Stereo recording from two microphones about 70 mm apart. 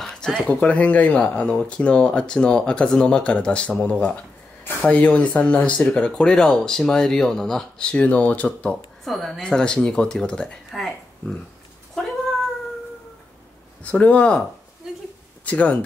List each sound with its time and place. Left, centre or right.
0.0 s a sound: centre
0.5 s speech: centre
9.0 s speech: centre
9.4 s speech: centre
13.8 s speech: centre
15.4 s speech: left